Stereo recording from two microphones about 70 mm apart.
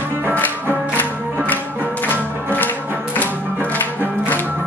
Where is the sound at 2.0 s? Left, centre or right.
Left.